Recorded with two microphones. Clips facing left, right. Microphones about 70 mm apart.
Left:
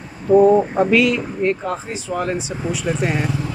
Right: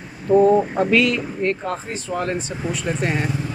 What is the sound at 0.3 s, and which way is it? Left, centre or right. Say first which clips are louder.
Speech: left 2 dB; centre.